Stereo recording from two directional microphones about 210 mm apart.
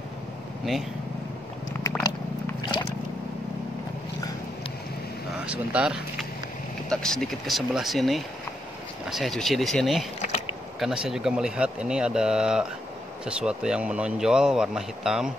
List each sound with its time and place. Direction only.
2.0 s biting: 20° left (ahead or behind)
5.4 s speech: 5° right (ahead or behind)